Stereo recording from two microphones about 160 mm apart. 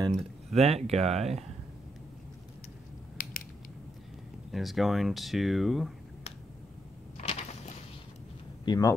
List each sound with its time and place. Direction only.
0.1 s speech: 40° right (ahead or behind)
4.5 s speech: centre (ahead or behind)
7.2 s a sound: 45° left (ahead or behind)
8.6 s speech: 20° left (ahead or behind)